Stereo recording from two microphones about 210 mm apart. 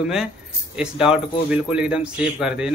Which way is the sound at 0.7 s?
5° right (ahead or behind).